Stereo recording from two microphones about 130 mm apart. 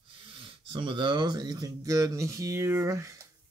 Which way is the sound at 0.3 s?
40° right (ahead or behind).